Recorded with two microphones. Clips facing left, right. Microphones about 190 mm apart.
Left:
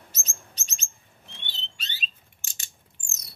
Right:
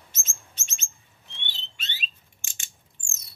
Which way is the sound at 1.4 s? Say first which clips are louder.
Right 1 dB; 35° left (ahead or behind).